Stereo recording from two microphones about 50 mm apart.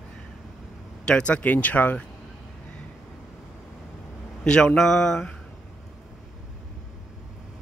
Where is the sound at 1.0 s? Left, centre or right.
Left.